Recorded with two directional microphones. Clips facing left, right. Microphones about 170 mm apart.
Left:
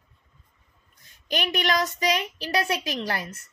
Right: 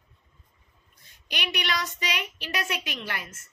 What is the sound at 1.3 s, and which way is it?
A woman's voice, 45° left (ahead or behind).